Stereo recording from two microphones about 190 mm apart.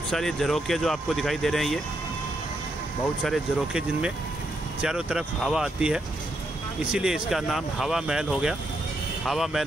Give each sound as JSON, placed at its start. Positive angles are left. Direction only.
{"t": 0.1, "sound": "speech", "side_deg": 0}
{"t": 3.3, "sound": "speech", "side_deg": -5}